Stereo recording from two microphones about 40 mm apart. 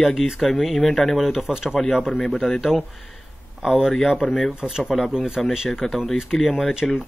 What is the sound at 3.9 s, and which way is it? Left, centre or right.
Speech, centre.